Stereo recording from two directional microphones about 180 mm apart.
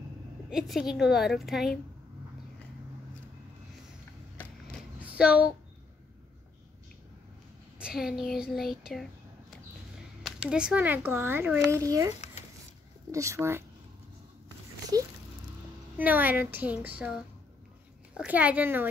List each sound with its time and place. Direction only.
0.5 s a woman's voice: centre (ahead or behind)
5.0 s speech: 5° right (ahead or behind)
7.8 s a woman's voice: centre (ahead or behind)
10.2 s a child's voice: 5° right (ahead or behind)
14.9 s a sound: 20° right (ahead or behind)
16.0 s a child's voice: 10° right (ahead or behind)
18.1 s a child's voice: 10° right (ahead or behind)